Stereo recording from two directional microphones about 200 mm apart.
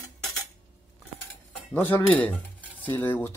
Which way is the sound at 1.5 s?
10° left (ahead or behind).